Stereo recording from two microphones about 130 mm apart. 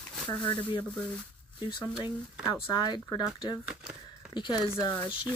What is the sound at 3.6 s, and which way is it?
Speech, 5° right (ahead or behind).